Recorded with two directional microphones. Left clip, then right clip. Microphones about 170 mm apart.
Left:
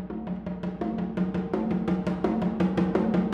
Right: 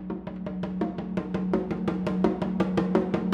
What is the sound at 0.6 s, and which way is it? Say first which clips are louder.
Music: even; 35° right (ahead or behind).